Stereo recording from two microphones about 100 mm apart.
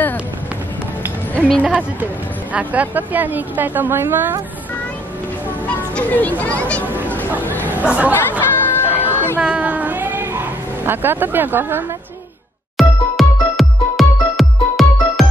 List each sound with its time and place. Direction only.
1.6 s a woman's voice: 10° right (ahead or behind)
5.9 s speech: 15° left (ahead or behind)
7.4 s chatter: 20° left (ahead or behind)
7.7 s speech: 15° right (ahead or behind)
8.1 s chatter: 20° left (ahead or behind)
9.4 s female singing: 15° right (ahead or behind)
10.9 s speech: 20° right (ahead or behind)
12.7 s music: centre (ahead or behind)